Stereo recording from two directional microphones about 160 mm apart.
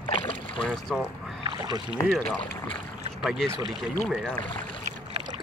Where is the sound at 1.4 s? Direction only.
25° right (ahead or behind).